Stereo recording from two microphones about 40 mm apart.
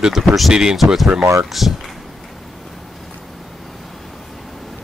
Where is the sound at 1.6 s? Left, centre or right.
Centre.